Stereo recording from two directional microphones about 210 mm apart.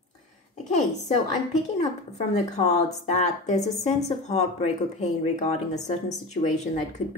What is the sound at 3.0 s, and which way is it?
A woman's voice, 35° left (ahead or behind).